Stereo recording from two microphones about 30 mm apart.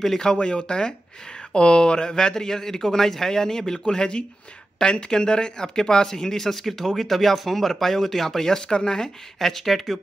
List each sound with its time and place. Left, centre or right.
0.2 s speech: left; by 8.5 s centre
8.5 s speech: left
9.4 s speech: centre